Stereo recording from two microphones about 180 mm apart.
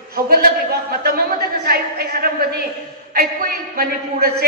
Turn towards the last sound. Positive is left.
turn(degrees=-55)  # may be behind; listen again after turning